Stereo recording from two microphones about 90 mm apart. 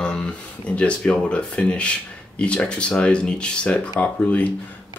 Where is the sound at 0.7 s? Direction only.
10° left (ahead or behind).